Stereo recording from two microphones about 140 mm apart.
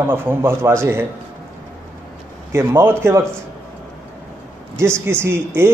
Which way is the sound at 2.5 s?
15° right (ahead or behind).